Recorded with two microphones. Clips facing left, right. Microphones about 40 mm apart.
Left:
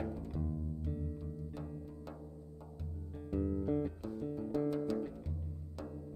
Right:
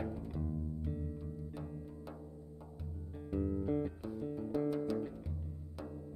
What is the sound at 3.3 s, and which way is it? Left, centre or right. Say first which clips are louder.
Music: even; centre.